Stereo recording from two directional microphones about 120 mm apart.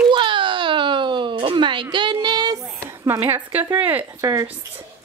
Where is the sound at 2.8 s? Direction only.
20° right (ahead or behind).